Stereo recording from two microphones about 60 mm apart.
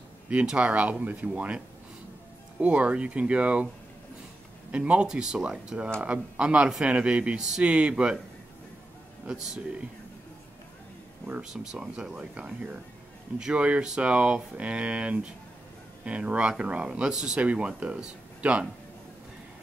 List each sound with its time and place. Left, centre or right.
0.3 s speech: centre
2.6 s speech: centre
4.6 s speech: right
9.2 s speech: centre
11.4 s speech: centre